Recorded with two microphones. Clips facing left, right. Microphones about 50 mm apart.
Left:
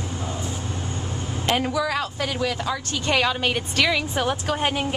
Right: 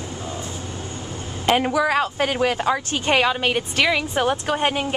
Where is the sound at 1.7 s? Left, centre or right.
Right.